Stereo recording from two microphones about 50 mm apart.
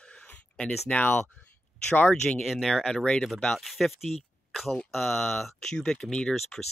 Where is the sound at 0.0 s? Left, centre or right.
Left.